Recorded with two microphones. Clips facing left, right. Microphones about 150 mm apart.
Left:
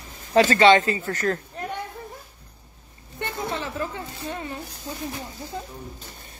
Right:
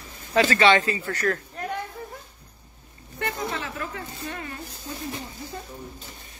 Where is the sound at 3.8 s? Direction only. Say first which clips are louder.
Left 4 dB; 30° left (ahead or behind).